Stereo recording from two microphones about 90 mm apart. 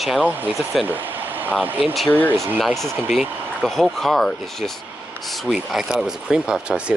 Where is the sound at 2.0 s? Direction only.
20° left (ahead or behind).